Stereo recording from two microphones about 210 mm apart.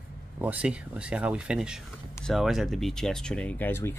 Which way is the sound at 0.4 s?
5° right (ahead or behind).